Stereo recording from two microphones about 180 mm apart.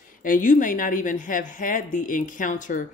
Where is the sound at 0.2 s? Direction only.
45° left (ahead or behind).